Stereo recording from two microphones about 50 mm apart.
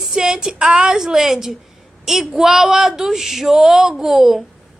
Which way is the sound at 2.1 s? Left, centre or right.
Centre.